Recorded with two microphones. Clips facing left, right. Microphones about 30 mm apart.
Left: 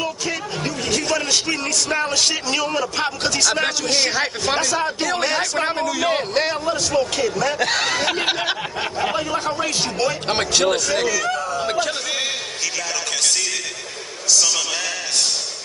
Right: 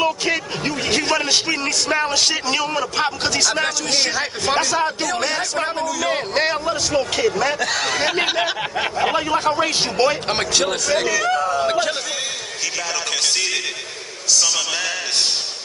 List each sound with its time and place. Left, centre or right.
0.0 s a man's voice: right; by 3.6 s centre
4.1 s speech: centre
4.6 s a man's voice: centre
5.0 s speech: centre
6.4 s a man's voice: centre
7.5 s speech: centre
8.7 s a man's voice: centre
10.2 s speech: centre
11.1 s a man's voice: centre